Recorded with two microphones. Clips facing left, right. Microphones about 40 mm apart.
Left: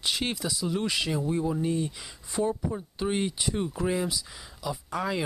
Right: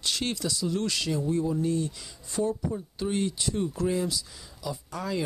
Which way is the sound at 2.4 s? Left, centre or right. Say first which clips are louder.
Even; left.